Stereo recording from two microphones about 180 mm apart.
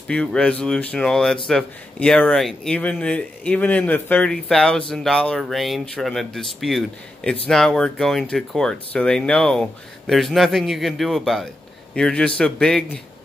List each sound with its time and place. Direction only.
0.1 s speech: 5° left (ahead or behind)